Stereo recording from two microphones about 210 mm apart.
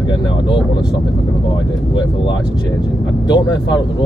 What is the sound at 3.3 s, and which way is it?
Speech, 20° left (ahead or behind).